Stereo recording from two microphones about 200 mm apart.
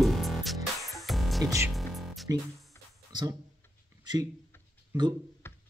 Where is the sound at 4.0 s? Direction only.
20° right (ahead or behind).